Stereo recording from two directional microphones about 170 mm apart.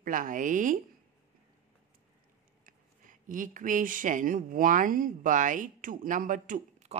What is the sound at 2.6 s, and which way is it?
A woman's voice, 50° right (ahead or behind).